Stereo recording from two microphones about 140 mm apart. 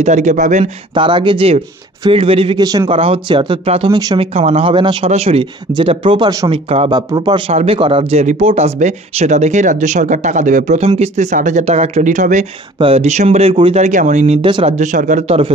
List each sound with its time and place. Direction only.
0.0 s speech: 60° right (ahead or behind)
0.9 s speech: 35° right (ahead or behind)
2.6 s a man's voice: 25° right (ahead or behind)
2.9 s speech: 40° right (ahead or behind)
5.8 s speech: 35° right (ahead or behind)
6.9 s speech: 30° right (ahead or behind); by 12.4 s 65° right (ahead or behind)
12.7 s speech: 45° right (ahead or behind)
13.8 s speech: 60° right (ahead or behind)
14.4 s speech: 40° right (ahead or behind)
14.8 s speech: 65° right (ahead or behind)
15.2 s speech: 45° right (ahead or behind)